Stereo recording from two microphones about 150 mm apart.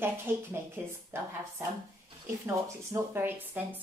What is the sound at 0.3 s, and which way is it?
Speech, 15° right (ahead or behind).